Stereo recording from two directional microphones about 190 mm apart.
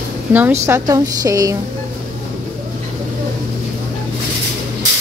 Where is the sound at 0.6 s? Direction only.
15° right (ahead or behind).